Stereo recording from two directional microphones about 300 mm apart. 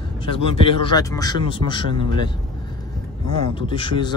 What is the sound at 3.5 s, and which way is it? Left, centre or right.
Speech, centre.